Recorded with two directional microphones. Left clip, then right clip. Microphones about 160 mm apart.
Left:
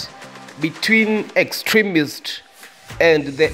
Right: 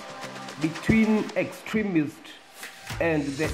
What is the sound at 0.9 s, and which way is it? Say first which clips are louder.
Speech: left 9 dB; 45° left (ahead or behind).